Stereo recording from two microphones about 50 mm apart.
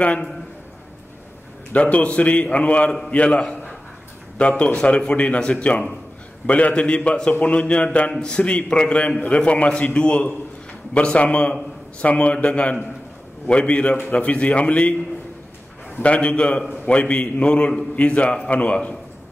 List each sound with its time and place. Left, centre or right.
1.7 s a man's voice: left
8.2 s a man's voice: centre
16.0 s a man's voice: left